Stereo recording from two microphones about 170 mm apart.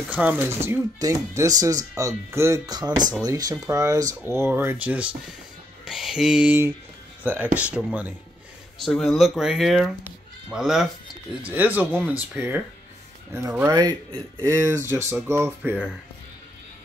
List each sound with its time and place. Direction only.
0.1 s speech: 10° right (ahead or behind)
5.9 s a sound: centre (ahead or behind)
7.5 s speech: 10° right (ahead or behind)
8.8 s speech: centre (ahead or behind)
13.7 s speech: 25° right (ahead or behind)